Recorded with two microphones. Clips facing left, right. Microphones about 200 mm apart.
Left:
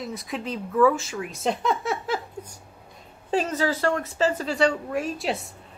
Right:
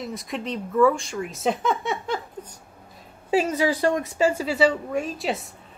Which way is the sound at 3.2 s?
10° right (ahead or behind).